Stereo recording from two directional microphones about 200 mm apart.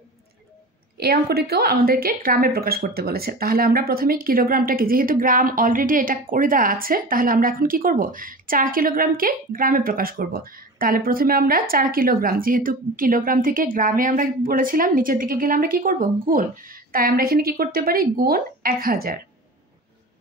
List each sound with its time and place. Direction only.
0.9 s speech: 50° right (ahead or behind)